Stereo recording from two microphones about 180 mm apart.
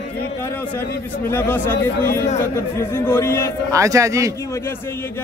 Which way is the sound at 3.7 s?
20° right (ahead or behind).